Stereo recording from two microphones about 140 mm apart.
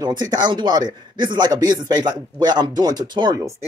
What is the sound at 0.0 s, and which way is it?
Speech, 30° right (ahead or behind).